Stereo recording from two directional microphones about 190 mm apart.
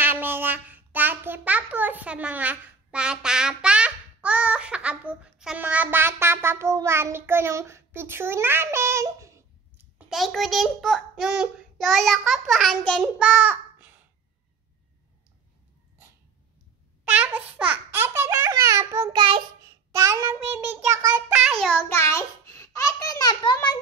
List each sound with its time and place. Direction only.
0.0 s child singing: 10° right (ahead or behind)
9.9 s a child's voice: centre (ahead or behind)
13.2 s a sound: 5° right (ahead or behind)
17.2 s a child's voice: 10° right (ahead or behind)
21.3 s a child's voice: centre (ahead or behind); by 23.8 s 25° left (ahead or behind)